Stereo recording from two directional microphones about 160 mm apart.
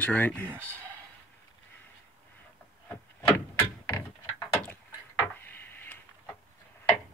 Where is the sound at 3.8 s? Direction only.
25° left (ahead or behind).